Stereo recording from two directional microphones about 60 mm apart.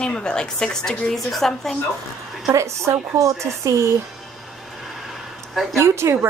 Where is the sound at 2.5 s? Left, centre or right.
Right.